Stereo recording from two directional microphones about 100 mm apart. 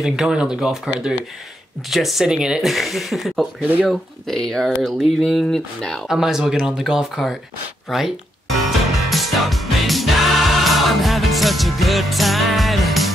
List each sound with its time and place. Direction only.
0.0 s speech: 5° right (ahead or behind)
3.6 s speech: 15° right (ahead or behind)
3.9 s speech: 5° left (ahead or behind)
7.9 s music: centre (ahead or behind)